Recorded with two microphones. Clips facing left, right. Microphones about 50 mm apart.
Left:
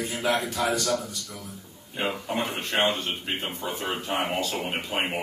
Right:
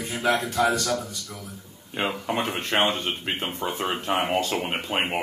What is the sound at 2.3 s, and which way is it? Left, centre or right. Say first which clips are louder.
A man's voice: right 2 dB; right.